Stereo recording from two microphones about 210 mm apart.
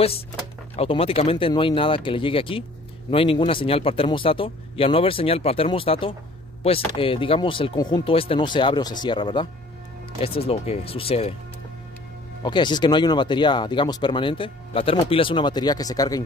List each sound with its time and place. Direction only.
0.7 s speech: 25° left (ahead or behind)
12.4 s speech: 20° left (ahead or behind)